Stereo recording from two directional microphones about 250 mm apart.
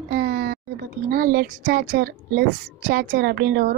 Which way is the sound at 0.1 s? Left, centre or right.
Right.